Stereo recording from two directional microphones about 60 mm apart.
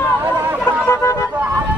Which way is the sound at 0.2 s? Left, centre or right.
Right.